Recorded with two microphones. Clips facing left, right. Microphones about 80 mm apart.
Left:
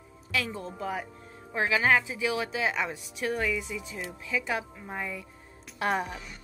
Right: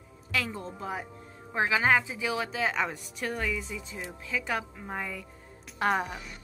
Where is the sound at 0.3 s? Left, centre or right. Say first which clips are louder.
Even; right.